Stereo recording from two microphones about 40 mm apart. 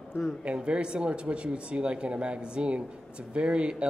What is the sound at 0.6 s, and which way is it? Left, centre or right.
Speech, right.